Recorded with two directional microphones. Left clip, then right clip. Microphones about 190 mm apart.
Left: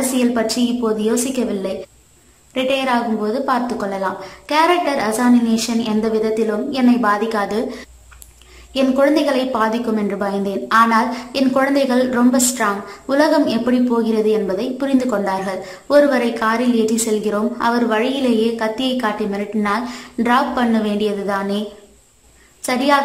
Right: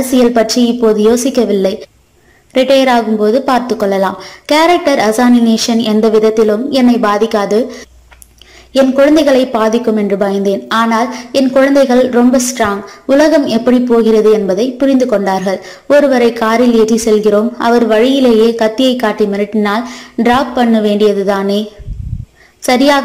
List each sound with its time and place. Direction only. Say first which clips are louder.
0.1 s a woman's voice: right 12 dB; 25° right (ahead or behind)
22.7 s a woman's voice: right 6 dB; 20° right (ahead or behind)